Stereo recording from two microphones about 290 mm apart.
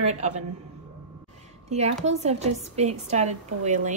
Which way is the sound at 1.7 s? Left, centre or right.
Right.